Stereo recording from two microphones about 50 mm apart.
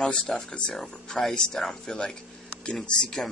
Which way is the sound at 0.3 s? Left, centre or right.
Centre.